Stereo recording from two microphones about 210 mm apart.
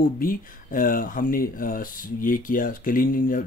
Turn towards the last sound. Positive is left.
turn(degrees=40)  # may be behind; listen again after turning